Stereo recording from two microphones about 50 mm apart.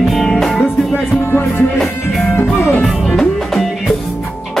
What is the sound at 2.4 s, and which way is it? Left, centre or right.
Music, left.